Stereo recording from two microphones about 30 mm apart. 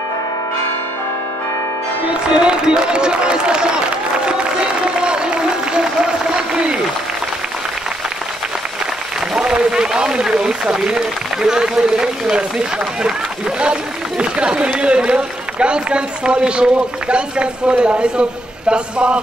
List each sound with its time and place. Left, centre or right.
2.2 s speech: right
2.9 s a sound: right
9.3 s a man's voice: right